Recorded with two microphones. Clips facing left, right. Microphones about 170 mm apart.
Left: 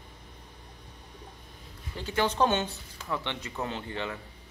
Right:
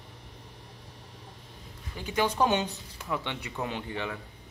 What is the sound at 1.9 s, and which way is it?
Speech, 15° right (ahead or behind).